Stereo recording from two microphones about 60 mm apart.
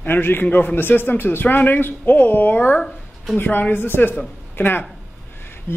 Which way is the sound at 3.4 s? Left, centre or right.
Left.